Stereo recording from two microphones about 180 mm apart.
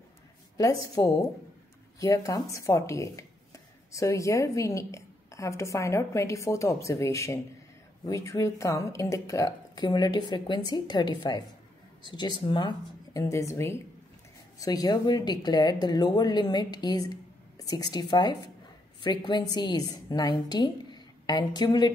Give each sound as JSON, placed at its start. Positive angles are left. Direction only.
{"t": 0.6, "sound": "a woman's voice", "side_deg": 20}